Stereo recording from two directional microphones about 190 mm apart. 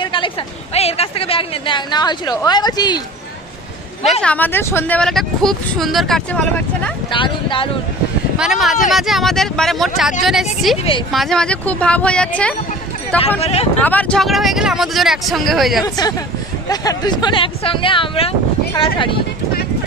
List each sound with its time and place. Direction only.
0.0 s a sound: 25° left (ahead or behind)
0.7 s a woman's voice: 30° left (ahead or behind)
4.0 s speech: centre (ahead or behind)
7.1 s a woman's voice: 25° left (ahead or behind)
8.4 s speech: centre (ahead or behind)
13.4 s speech: 35° left (ahead or behind)
13.7 s speech: 5° left (ahead or behind)
15.8 s a woman's voice: 20° left (ahead or behind)